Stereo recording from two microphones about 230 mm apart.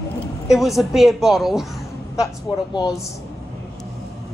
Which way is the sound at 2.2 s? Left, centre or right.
Centre.